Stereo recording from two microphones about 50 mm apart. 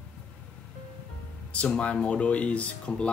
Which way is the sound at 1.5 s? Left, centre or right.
Left.